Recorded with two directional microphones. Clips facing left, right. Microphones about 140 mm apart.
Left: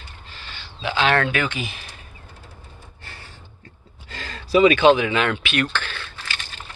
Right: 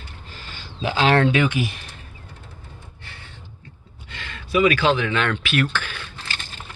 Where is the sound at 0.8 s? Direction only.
35° right (ahead or behind).